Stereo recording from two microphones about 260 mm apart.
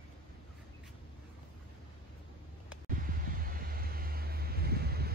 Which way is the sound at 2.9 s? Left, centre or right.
Right.